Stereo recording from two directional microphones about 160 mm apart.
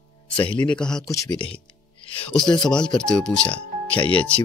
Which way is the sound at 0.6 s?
5° left (ahead or behind).